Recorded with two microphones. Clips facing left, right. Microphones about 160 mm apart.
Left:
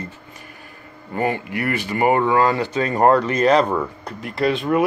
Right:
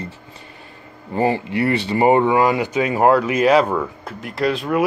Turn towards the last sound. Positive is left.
turn(degrees=0)  # may be behind; listen again after turning